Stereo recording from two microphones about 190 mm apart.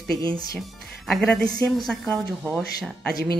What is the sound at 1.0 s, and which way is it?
Speech, centre (ahead or behind).